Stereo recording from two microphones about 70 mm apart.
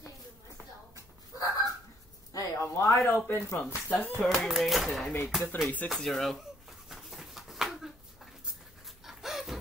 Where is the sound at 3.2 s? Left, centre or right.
Left.